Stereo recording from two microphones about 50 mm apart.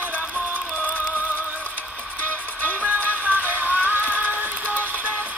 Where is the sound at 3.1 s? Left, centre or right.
Right.